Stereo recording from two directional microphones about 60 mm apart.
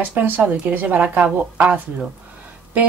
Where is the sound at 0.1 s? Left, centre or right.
Right.